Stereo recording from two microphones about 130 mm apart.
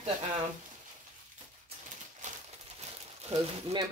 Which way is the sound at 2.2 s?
65° right (ahead or behind).